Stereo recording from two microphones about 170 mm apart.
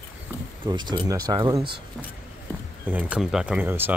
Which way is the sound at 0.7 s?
25° right (ahead or behind).